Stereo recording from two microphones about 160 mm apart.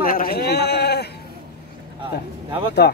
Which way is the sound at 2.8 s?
90° left.